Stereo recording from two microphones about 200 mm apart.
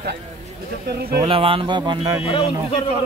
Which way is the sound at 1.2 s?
25° right (ahead or behind).